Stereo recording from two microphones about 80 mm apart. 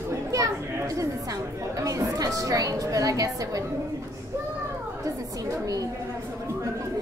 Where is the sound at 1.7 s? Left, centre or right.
Right.